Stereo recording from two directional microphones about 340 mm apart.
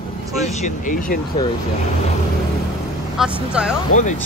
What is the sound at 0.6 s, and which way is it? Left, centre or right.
Speech, left.